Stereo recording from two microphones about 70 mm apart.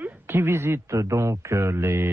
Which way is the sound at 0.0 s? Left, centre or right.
Right.